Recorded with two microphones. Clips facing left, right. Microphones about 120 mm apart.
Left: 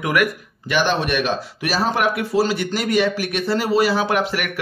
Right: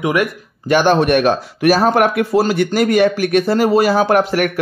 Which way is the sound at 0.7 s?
45° right (ahead or behind).